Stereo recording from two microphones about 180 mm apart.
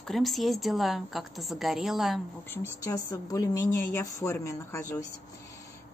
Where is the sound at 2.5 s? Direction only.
20° left (ahead or behind).